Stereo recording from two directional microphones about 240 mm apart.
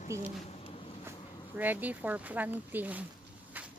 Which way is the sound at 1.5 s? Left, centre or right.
Centre.